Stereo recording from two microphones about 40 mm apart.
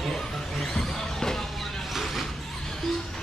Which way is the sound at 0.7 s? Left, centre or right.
Centre.